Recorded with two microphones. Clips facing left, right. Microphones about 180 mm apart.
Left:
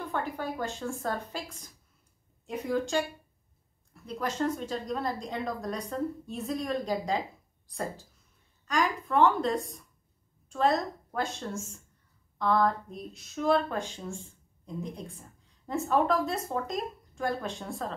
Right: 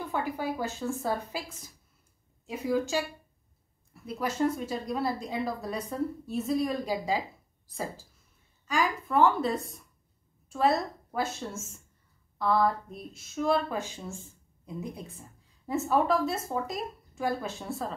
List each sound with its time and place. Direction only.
0.1 s a woman's voice: 10° right (ahead or behind)